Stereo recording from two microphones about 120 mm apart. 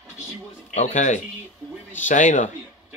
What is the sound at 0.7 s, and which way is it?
Speech, 85° left.